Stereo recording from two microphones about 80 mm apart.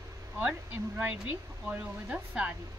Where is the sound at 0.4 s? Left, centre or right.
Centre.